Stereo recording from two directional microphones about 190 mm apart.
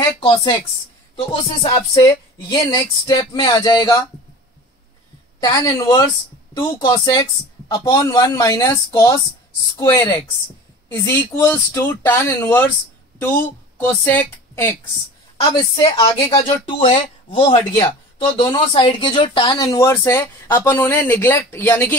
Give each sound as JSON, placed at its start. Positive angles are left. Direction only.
{"t": 0.2, "sound": "speech", "side_deg": 25}
{"t": 5.4, "sound": "a man's voice", "side_deg": 20}
{"t": 13.7, "sound": "a woman's voice", "side_deg": 10}
{"t": 15.4, "sound": "speech", "side_deg": 25}